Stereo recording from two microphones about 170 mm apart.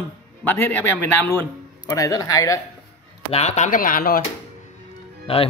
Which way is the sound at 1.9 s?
20° left (ahead or behind).